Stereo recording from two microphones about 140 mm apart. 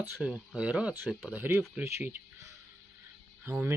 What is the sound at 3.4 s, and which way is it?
Speech, 15° right (ahead or behind).